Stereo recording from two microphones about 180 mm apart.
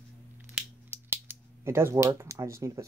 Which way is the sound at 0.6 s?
10° right (ahead or behind).